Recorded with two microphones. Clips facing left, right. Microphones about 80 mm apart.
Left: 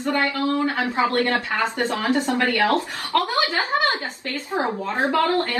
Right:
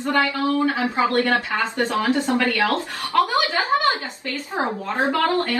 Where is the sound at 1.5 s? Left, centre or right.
Left.